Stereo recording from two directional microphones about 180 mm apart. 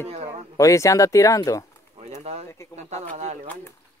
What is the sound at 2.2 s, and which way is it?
Speech, 35° right (ahead or behind).